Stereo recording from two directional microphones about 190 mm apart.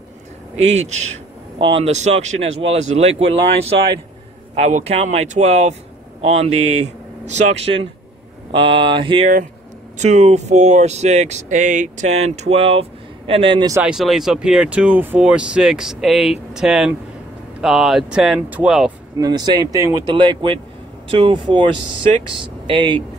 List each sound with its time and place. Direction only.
0.6 s speech: 35° right (ahead or behind)
6.5 s speech: 90° right
7.2 s speech: 35° right (ahead or behind)
9.9 s speech: 35° right (ahead or behind); by 13.8 s 20° right (ahead or behind)
13.8 s speech: centre (ahead or behind)
19.1 s speech: 20° right (ahead or behind)